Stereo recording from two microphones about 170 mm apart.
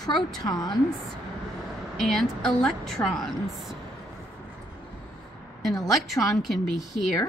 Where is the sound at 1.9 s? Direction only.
Centre (ahead or behind).